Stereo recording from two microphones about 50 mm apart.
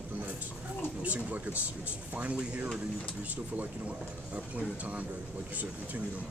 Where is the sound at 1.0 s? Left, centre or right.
Right.